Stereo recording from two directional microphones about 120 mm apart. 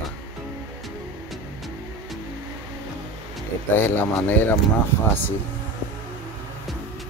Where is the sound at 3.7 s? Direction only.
15° left (ahead or behind).